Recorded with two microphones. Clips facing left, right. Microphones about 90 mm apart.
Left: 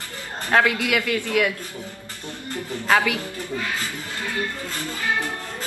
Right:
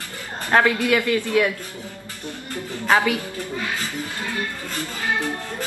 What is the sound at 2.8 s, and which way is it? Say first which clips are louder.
Speech: right 1 dB; 15° right (ahead or behind).